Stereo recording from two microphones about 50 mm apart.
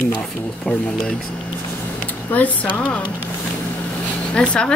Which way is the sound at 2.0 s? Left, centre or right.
Left.